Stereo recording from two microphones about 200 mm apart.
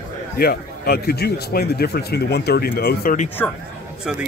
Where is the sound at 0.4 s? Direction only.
50° left (ahead or behind).